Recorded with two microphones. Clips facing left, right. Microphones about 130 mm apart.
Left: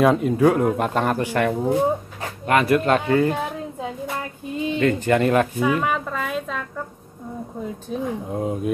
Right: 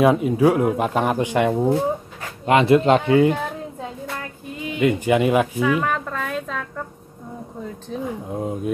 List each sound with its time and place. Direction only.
0.0 s speech: 5° right (ahead or behind)
4.7 s speech: 10° right (ahead or behind)
5.7 s a sound: 5° left (ahead or behind)
7.9 s speech: centre (ahead or behind)